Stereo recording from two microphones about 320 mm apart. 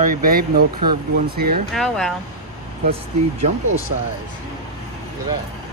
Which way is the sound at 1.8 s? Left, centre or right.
Centre.